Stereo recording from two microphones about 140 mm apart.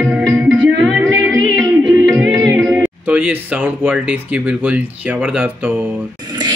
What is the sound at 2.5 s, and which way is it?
Speech, 5° right (ahead or behind).